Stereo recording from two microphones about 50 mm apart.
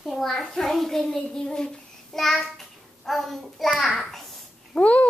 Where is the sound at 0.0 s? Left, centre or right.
Centre.